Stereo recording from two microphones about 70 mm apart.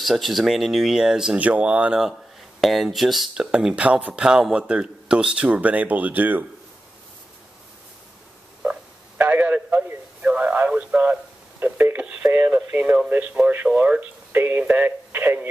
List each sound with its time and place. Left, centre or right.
0.0 s speech: centre
1.4 s speech: centre
2.6 s speech: centre
3.5 s speech: centre
9.2 s radio: right
11.6 s a sound: right
12.5 s speech: right